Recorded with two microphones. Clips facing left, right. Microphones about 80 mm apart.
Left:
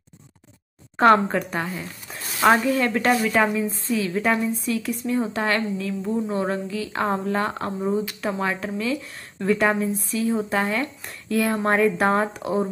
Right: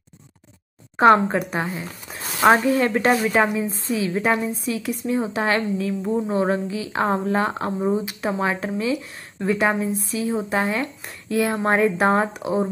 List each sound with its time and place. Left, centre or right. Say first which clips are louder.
0.9 s speech: right 2 dB; centre
2.5 s a woman's voice: right 2 dB; right
9.4 s speech: even; centre